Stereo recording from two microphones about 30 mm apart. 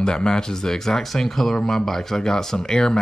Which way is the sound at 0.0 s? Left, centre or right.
Left.